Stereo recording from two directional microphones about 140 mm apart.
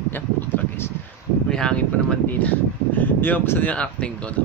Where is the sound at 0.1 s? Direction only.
15° left (ahead or behind).